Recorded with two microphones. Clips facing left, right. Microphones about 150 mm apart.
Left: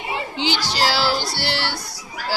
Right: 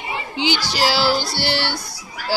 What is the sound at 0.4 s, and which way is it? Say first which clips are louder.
Speech: right 2 dB; 10° right (ahead or behind).